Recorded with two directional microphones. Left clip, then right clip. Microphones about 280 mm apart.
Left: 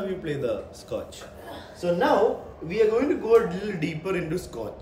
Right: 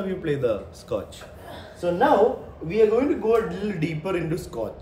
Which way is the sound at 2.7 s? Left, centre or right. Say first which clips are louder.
Right 2 dB; centre.